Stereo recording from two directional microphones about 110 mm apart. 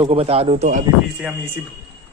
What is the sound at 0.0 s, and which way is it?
Speech, 65° right (ahead or behind).